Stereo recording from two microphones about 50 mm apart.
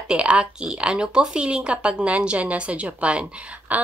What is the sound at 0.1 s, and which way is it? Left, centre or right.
Speech, right.